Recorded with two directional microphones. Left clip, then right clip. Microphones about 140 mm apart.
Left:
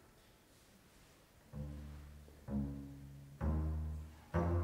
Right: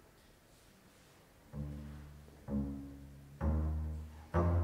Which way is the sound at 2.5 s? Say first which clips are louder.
Right 3 dB; 40° left (ahead or behind).